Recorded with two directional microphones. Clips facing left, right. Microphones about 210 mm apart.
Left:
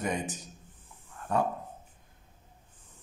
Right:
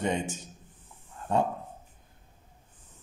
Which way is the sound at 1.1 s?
25° right (ahead or behind).